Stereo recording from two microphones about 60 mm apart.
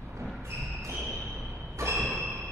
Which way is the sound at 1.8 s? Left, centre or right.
Right.